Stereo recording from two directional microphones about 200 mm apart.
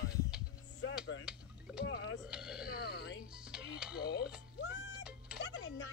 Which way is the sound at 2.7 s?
50° left (ahead or behind).